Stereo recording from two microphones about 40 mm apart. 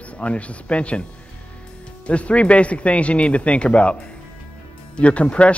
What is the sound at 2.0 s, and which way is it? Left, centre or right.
Speech, left.